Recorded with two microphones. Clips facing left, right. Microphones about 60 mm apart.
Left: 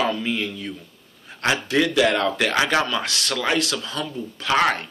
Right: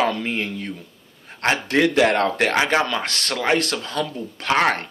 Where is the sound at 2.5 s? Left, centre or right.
Right.